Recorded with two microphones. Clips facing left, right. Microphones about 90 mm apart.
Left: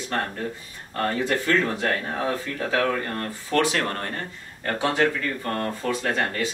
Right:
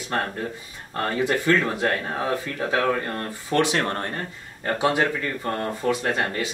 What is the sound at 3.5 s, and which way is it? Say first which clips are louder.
Speech: right 1 dB; 25° right (ahead or behind).